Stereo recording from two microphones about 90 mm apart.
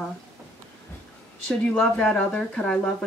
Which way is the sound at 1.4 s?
10° left (ahead or behind).